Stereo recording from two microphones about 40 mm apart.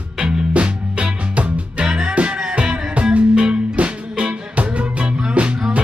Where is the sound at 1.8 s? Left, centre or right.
Right.